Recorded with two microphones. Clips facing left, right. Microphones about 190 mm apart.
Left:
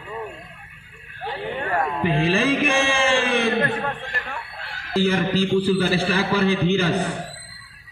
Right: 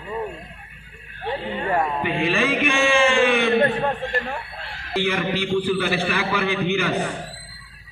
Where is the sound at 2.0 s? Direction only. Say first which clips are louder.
Left 2 dB; 35° left (ahead or behind).